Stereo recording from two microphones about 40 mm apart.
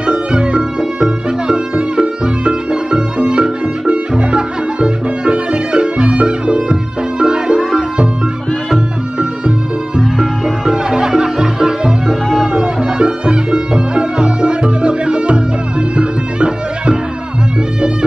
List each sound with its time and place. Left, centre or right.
0.0 s music: right
9.9 s music: centre
12.1 s music: centre
12.5 s music: right